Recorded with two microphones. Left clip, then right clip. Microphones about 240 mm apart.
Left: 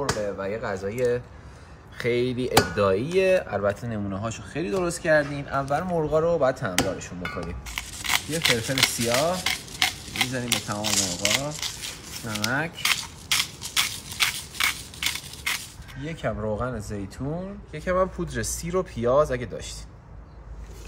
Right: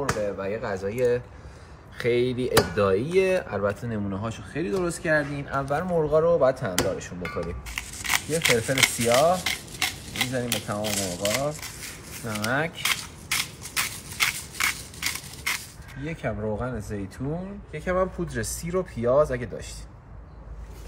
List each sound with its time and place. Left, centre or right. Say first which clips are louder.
0.1 s speech: even; centre
12.4 s speech: even; centre
13.3 s a sound: left 3 dB; centre
16.1 s speech: left 1 dB; centre
17.7 s speech: left 1 dB; centre